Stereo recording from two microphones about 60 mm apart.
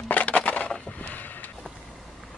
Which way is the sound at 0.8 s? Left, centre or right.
Left.